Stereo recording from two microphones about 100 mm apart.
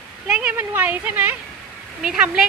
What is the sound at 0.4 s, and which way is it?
A woman's voice, 15° right (ahead or behind).